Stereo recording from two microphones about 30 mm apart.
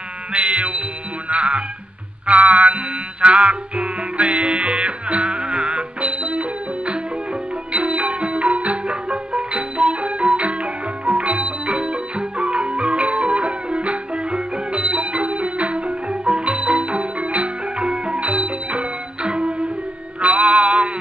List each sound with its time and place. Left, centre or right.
0.3 s music: right
7.7 s music: right